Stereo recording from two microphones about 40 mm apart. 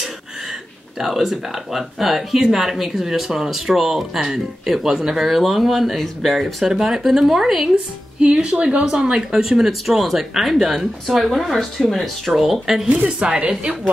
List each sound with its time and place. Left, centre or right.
0.9 s speech: centre
6.4 s speech: centre
7.7 s a woman's voice: right; by 12.8 s centre
12.8 s speech: right